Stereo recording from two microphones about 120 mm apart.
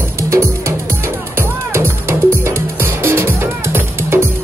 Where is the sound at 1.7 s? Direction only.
20° right (ahead or behind).